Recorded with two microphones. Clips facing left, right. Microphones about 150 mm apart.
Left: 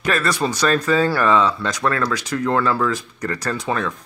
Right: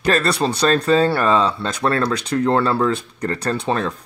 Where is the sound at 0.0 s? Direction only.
35° right (ahead or behind).